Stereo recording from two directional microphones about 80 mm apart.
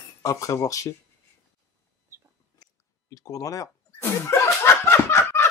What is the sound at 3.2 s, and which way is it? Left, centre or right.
Speech, left.